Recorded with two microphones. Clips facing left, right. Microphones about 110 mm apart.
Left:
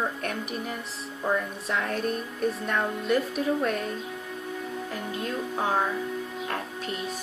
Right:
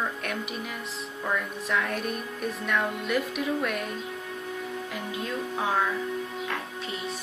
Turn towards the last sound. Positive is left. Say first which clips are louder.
# left 1 dB
turn(degrees=45)  # may be behind; listen again after turning